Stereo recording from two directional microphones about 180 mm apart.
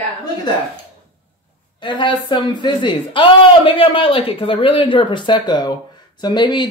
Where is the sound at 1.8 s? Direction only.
25° left (ahead or behind).